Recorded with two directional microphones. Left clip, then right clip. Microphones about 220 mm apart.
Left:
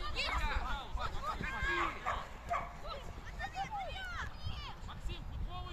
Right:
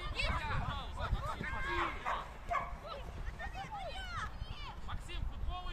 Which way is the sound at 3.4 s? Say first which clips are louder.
Left 5 dB; 15° left (ahead or behind).